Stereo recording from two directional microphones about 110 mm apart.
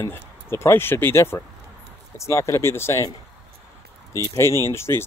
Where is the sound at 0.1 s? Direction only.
25° left (ahead or behind).